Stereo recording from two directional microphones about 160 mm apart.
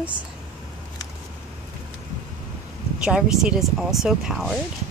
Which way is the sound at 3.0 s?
5° right (ahead or behind).